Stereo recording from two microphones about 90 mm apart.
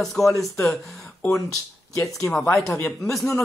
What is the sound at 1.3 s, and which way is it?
Speech, 35° left (ahead or behind).